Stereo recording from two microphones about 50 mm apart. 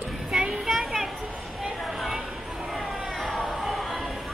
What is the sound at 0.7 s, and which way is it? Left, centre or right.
Children playing, centre.